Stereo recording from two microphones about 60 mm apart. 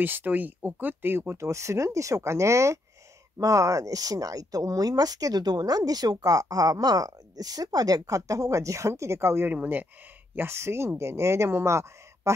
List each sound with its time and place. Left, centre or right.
0.0 s speech: right
3.3 s speech: right
9.5 s speech: right
10.3 s speech: right